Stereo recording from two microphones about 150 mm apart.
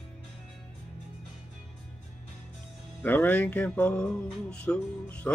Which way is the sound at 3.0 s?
10° left (ahead or behind).